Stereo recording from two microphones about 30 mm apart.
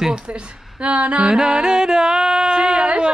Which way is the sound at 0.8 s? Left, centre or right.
Right.